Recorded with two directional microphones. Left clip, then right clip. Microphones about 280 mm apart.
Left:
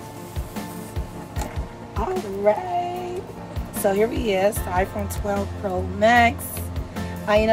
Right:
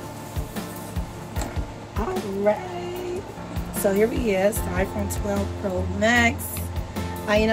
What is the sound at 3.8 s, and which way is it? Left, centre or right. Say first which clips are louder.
Speech: left 1 dB; centre.